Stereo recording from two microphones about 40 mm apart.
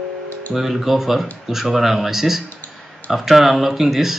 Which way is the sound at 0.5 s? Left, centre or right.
Centre.